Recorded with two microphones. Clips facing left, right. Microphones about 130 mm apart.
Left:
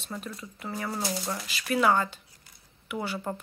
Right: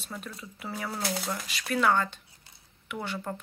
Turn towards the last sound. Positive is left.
turn(degrees=5)  # may be behind; listen again after turning